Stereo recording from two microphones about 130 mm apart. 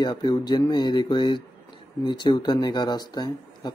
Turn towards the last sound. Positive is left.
turn(degrees=35)  # may be behind; listen again after turning